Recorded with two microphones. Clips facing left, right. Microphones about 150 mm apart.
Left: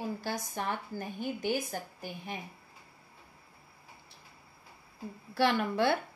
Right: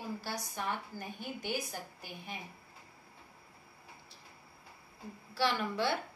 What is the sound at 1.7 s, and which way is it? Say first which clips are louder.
Speech: left 5 dB; 50° left (ahead or behind).